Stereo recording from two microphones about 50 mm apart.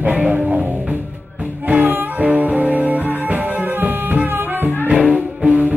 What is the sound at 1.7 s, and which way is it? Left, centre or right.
Music, right.